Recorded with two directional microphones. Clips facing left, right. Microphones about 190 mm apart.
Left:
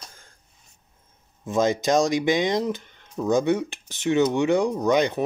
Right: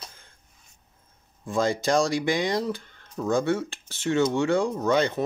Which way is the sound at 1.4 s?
20° left (ahead or behind).